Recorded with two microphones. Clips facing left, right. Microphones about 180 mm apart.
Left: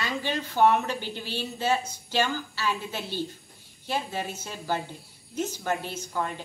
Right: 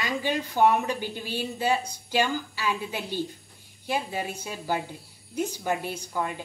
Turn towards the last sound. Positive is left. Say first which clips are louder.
# right 1 dB
turn(degrees=-10)  # may be behind; listen again after turning